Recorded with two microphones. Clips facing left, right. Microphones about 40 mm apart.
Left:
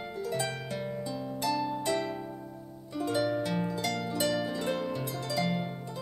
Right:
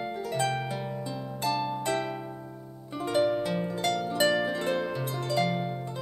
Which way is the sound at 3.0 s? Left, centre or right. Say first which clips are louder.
Right 3 dB; right.